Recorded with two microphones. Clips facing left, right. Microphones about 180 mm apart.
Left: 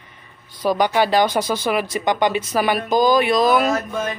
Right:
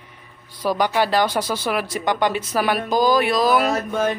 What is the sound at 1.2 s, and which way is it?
Speech, 15° left (ahead or behind).